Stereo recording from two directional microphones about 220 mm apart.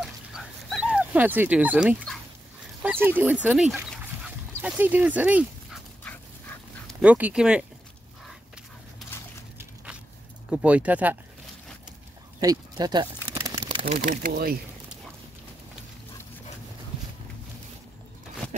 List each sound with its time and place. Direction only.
0.0 s dog: centre (ahead or behind)
2.8 s speech: 5° right (ahead or behind)
6.9 s speech: 5° right (ahead or behind)
10.5 s speech: 5° right (ahead or behind)
12.4 s a sound: 15° right (ahead or behind)
13.9 s speech: 40° right (ahead or behind)